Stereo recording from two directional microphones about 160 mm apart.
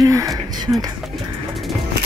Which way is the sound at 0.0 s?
20° right (ahead or behind).